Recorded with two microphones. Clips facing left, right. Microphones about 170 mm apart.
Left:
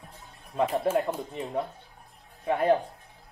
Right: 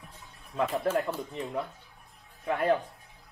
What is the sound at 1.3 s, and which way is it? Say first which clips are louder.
Speech: left 2 dB; 35° left (ahead or behind).